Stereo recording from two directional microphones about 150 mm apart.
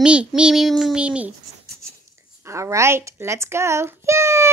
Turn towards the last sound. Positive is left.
turn(degrees=-20)  # may be behind; listen again after turning